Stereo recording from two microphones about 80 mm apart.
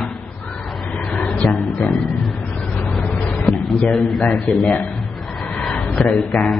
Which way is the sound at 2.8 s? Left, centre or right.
Centre.